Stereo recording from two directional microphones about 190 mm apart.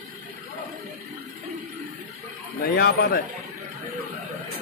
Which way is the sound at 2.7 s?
55° left (ahead or behind).